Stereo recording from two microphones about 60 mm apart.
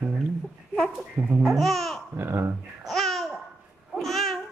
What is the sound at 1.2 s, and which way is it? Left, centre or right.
Speech, right.